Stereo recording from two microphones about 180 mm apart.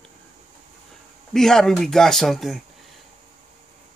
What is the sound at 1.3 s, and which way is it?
Speech, 5° left (ahead or behind).